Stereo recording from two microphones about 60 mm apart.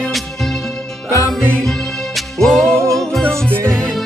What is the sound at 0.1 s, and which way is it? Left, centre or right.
Music, centre.